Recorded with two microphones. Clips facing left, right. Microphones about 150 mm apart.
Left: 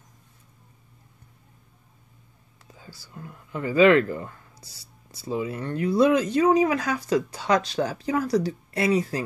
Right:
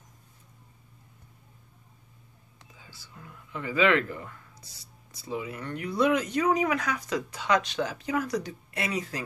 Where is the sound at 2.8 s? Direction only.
35° left (ahead or behind).